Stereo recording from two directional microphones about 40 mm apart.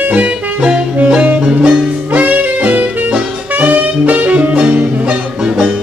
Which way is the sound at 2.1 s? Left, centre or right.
Right.